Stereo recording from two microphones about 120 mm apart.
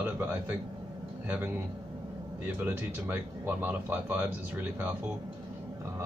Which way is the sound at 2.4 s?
15° right (ahead or behind).